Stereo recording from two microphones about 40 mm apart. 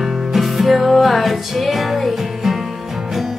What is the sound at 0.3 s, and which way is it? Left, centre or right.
Music, centre.